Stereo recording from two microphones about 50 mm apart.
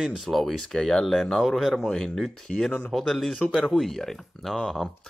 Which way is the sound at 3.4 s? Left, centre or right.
Centre.